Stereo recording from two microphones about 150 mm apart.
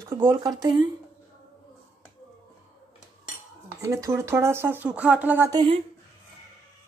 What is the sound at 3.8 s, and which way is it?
Speech, 20° right (ahead or behind).